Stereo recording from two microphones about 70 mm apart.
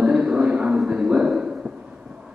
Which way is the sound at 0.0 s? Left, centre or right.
Centre.